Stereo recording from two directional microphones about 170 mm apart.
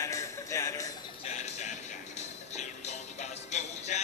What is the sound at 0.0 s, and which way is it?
Music, 20° left (ahead or behind).